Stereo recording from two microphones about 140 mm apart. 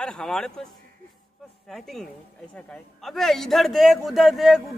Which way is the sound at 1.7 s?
Centre (ahead or behind).